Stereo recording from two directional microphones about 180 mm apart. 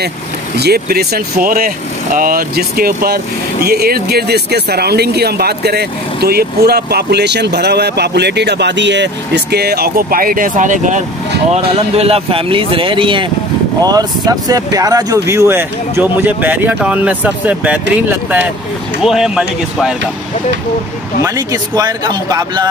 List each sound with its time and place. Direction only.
0.6 s speech: 60° right (ahead or behind); by 11.0 s 45° right (ahead or behind)
11.5 s speech: 35° right (ahead or behind); by 17.7 s 10° right (ahead or behind)
19.0 s speech: 5° right (ahead or behind)
21.2 s speech: 20° right (ahead or behind)